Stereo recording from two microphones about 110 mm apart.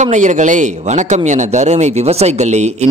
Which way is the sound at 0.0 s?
90° right.